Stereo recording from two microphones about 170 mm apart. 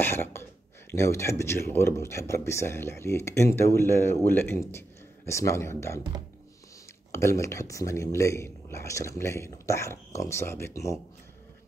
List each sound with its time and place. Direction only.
0.0 s speech: 15° left (ahead or behind)
7.1 s speech: 15° left (ahead or behind)